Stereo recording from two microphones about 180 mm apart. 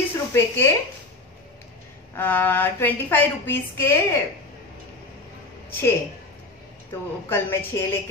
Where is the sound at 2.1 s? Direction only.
10° left (ahead or behind).